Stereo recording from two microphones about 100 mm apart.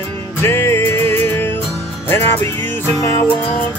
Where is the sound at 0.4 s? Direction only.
25° left (ahead or behind).